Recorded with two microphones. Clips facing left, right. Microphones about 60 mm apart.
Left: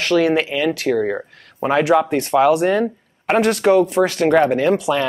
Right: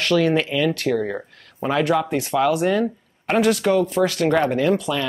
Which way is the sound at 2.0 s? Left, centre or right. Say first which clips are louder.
Left 5 dB; centre.